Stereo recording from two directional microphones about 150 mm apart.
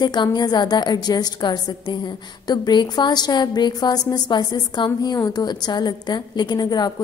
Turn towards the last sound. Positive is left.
turn(degrees=25)  # may be behind; listen again after turning